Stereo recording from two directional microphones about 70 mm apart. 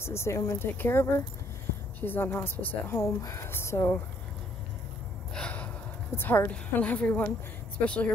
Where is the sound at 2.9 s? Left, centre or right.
Left.